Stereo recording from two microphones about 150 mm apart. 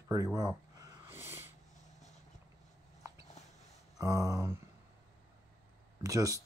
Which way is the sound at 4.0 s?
20° right (ahead or behind).